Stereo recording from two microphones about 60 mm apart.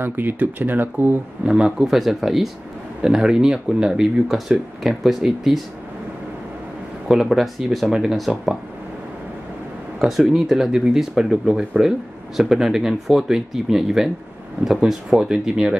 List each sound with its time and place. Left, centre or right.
0.0 s speech: right
1.4 s speech: centre
7.1 s speech: centre
9.9 s speech: centre